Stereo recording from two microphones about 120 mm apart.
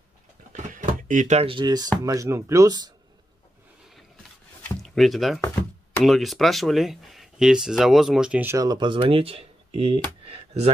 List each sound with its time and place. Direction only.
0.5 s drawer open or close: 90° right
1.4 s speech: 45° right (ahead or behind)
4.8 s speech: centre (ahead or behind)
8.5 s speech: 30° right (ahead or behind)
8.7 s speech: 45° right (ahead or behind)
10.2 s a sound: 55° right (ahead or behind)